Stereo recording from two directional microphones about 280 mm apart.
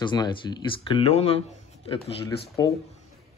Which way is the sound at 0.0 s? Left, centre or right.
Centre.